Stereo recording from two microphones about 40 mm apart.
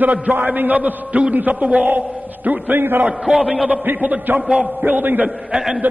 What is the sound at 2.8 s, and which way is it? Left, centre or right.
Speech, right.